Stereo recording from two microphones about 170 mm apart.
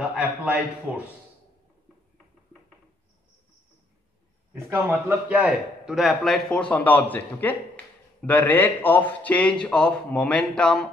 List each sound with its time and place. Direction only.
0.1 s a man's voice: 5° right (ahead or behind)
4.6 s a man's voice: 15° right (ahead or behind)
5.3 s a man's voice: 5° right (ahead or behind)